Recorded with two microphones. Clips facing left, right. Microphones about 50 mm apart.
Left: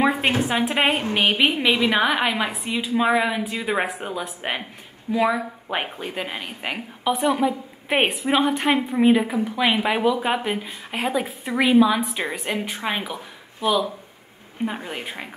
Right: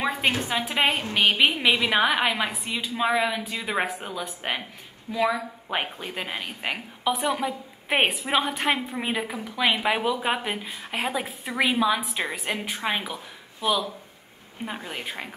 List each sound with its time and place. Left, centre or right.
0.0 s a woman's voice: centre
1.1 s a woman's voice: centre
1.6 s a woman's voice: centre